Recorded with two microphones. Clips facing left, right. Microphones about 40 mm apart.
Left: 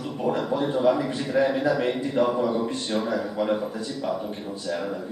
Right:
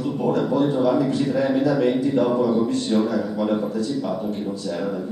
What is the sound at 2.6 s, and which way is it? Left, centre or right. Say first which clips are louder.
A man's voice: right 6 dB; centre.